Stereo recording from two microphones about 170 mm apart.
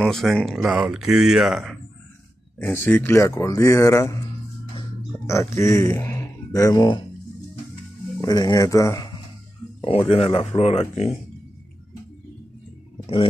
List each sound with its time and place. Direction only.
0.0 s speech: centre (ahead or behind)
2.6 s speech: 10° left (ahead or behind)
5.2 s speech: 15° left (ahead or behind)
8.2 s speech: 20° left (ahead or behind)
9.8 s speech: 35° left (ahead or behind)
13.0 s a sound: 35° left (ahead or behind)